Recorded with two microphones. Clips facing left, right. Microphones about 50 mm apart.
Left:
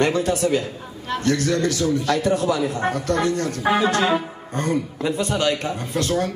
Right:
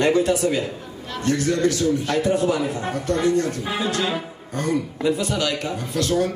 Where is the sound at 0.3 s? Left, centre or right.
Left.